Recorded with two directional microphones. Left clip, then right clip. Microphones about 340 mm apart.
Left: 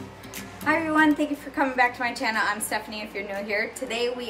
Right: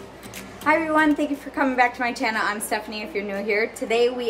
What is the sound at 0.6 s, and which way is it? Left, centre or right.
A woman's voice, centre.